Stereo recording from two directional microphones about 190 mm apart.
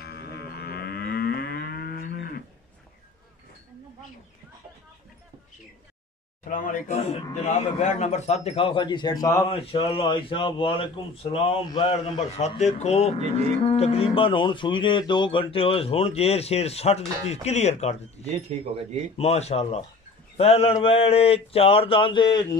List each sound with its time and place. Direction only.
0.0 s moo: 60° left (ahead or behind)
6.5 s a man's voice: 45° left (ahead or behind); by 9.5 s 15° left (ahead or behind)
9.5 s a man's voice: 30° left (ahead or behind)
18.5 s speech: 35° right (ahead or behind)
19.1 s speech: 35° left (ahead or behind)